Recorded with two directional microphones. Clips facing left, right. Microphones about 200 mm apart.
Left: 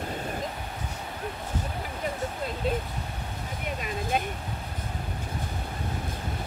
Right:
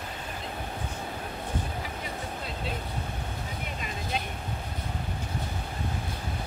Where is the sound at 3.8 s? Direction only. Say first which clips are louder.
Left 6 dB; 50° left (ahead or behind).